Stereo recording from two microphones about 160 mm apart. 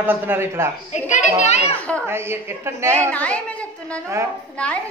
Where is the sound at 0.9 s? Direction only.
45° left (ahead or behind).